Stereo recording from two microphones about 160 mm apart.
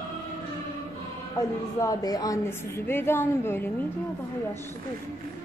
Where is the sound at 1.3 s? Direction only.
25° left (ahead or behind).